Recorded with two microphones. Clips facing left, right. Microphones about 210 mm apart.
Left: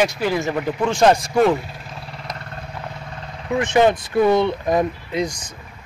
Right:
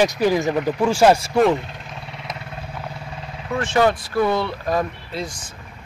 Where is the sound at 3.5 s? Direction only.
15° left (ahead or behind).